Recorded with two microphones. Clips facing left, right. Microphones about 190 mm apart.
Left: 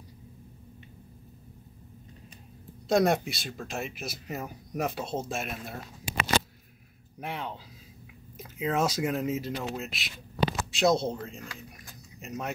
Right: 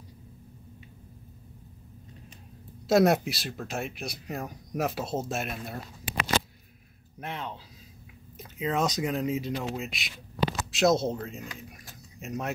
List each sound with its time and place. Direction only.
2.9 s speech: 5° right (ahead or behind)
6.1 s a sound: 65° right (ahead or behind)
7.2 s speech: 10° left (ahead or behind)